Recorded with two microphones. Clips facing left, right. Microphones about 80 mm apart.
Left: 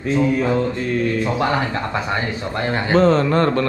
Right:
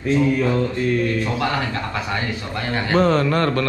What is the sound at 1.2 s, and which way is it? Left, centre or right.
A man's voice, centre.